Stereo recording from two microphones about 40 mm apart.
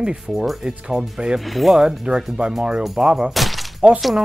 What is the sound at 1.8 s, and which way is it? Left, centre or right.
Speech, centre.